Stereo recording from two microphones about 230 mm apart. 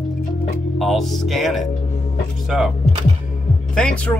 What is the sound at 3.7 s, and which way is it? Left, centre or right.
Music, centre.